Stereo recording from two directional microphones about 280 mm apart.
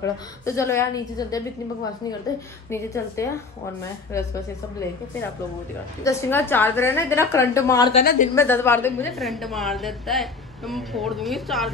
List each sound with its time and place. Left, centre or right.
0.0 s a woman's voice: centre
2.7 s a woman's voice: centre
6.0 s a woman's voice: centre
7.9 s a woman's voice: left
8.4 s a woman's voice: centre